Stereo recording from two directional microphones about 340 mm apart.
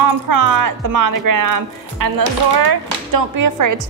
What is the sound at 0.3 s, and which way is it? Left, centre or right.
Speech, right.